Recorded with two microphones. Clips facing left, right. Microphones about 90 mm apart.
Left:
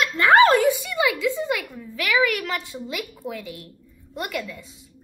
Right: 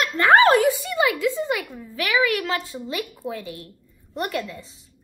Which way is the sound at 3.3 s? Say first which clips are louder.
Right 2 dB; 30° right (ahead or behind).